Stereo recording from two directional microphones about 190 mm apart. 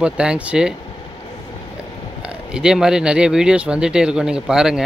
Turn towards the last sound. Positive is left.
turn(degrees=-5)  # may be behind; listen again after turning